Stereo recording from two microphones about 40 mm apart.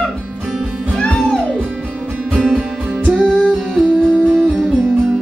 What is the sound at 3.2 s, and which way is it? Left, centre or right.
Music, centre.